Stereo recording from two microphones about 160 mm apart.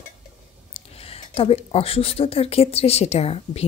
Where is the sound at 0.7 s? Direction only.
40° left (ahead or behind).